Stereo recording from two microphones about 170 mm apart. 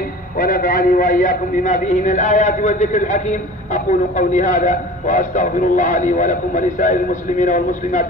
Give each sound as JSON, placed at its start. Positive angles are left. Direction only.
{"t": 0.4, "sound": "a man's voice", "side_deg": 60}